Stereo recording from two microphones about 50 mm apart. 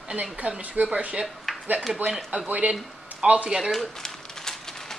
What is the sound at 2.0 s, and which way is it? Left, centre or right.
Speech, centre.